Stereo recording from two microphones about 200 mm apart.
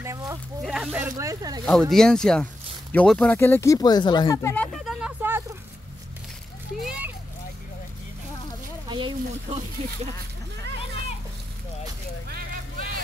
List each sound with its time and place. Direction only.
0.7 s speech: 5° right (ahead or behind)
1.1 s speech: 15° right (ahead or behind)
1.7 s speech: 5° left (ahead or behind)
4.8 s vehicle: 5° right (ahead or behind)
6.8 s children playing: 5° right (ahead or behind)
8.8 s a sound: 25° right (ahead or behind)